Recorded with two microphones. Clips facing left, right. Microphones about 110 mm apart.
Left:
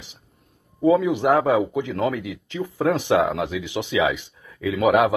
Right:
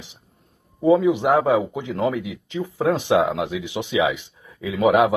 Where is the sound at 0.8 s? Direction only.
25° right (ahead or behind).